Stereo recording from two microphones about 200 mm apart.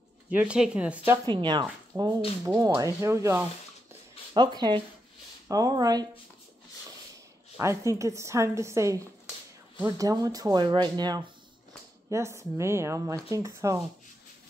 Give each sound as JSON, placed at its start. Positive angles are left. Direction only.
{"t": 0.3, "sound": "speech", "side_deg": -5}
{"t": 1.3, "sound": "speech", "side_deg": -20}
{"t": 7.5, "sound": "speech", "side_deg": -15}